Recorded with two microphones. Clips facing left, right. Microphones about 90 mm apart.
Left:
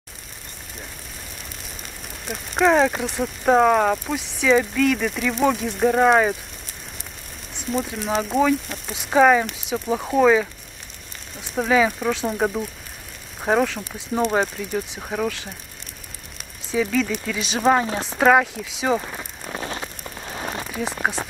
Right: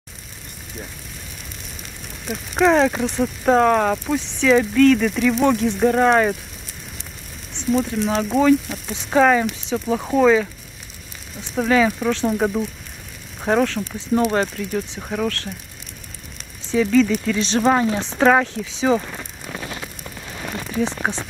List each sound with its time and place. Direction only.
2.2 s speech: centre (ahead or behind)
7.5 s speech: centre (ahead or behind)
11.5 s speech: 5° left (ahead or behind)
16.7 s speech: 5° left (ahead or behind)
20.2 s rain on surface: 25° left (ahead or behind)
20.6 s speech: 5° left (ahead or behind)